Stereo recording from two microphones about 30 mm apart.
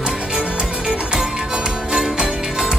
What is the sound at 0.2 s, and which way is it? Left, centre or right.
Music, right.